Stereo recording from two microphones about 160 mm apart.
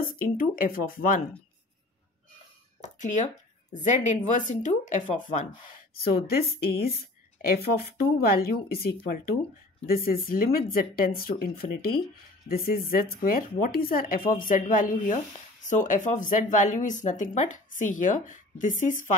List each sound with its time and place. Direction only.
0.2 s speech: 60° left (ahead or behind)
2.8 s speech: 50° left (ahead or behind)
5.9 s speech: 75° left (ahead or behind); by 19.1 s 55° left (ahead or behind)